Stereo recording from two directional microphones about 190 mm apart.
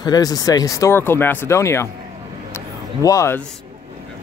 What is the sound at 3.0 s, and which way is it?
Speech, 15° left (ahead or behind).